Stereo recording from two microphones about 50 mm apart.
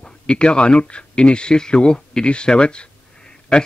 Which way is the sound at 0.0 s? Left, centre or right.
Left.